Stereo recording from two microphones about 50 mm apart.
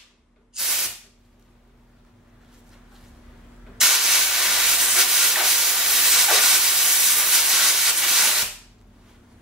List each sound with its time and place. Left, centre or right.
0.5 s spray: centre
3.7 s steam: centre